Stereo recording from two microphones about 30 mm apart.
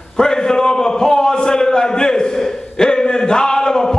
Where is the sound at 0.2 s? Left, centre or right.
Left.